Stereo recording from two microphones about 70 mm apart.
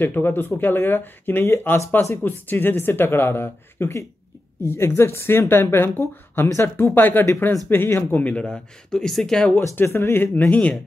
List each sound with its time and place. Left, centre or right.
0.0 s speech: left
6.9 s speech: left; by 9.6 s centre
9.8 s speech: left